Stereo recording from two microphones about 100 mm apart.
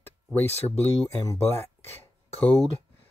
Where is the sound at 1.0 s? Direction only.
30° left (ahead or behind).